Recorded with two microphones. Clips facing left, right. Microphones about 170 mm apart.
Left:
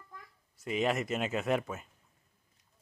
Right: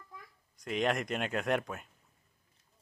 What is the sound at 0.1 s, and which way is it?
A child's voice, centre (ahead or behind).